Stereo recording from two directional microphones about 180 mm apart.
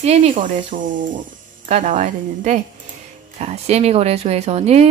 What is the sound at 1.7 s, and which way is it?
A woman's voice, 45° right (ahead or behind).